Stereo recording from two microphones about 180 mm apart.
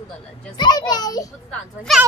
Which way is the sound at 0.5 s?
25° left (ahead or behind).